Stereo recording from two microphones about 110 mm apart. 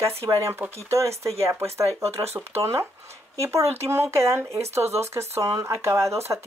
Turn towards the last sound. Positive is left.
turn(degrees=-25)  # may be behind; listen again after turning